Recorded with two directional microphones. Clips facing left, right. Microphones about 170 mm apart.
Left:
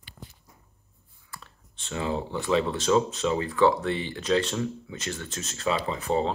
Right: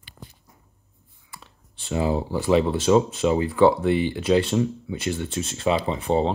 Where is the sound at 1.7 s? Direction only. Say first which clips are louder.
Right 7 dB; 30° right (ahead or behind).